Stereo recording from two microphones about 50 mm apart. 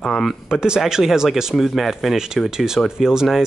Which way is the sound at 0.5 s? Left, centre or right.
Centre.